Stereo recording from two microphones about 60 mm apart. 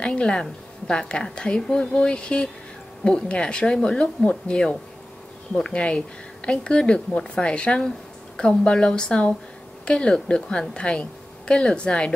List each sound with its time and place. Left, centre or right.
0.0 s a woman's voice: centre